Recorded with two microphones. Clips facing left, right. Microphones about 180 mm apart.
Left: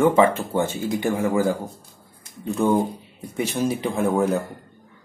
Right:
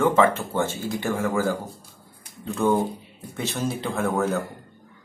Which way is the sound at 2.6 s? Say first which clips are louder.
Left 1 dB; 15° left (ahead or behind).